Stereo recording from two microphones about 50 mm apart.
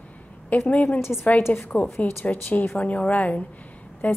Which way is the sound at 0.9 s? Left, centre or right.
Left.